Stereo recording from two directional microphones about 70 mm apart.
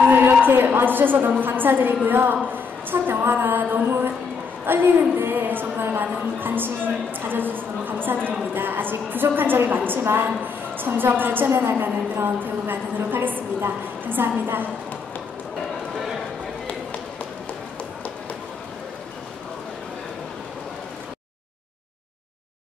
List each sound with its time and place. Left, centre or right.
0.1 s a woman's voice: right
2.9 s female singing: right
4.6 s a woman's voice: right